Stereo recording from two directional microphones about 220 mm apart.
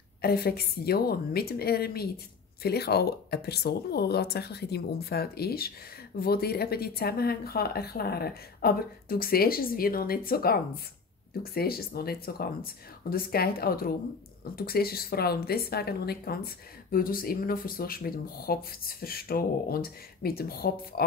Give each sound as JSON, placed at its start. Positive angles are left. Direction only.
{"t": 0.2, "sound": "speech", "side_deg": 45}